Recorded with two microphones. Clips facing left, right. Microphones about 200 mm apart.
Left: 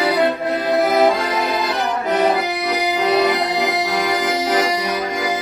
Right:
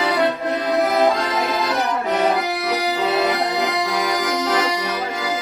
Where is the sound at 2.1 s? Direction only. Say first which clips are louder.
Left 3 dB; centre (ahead or behind).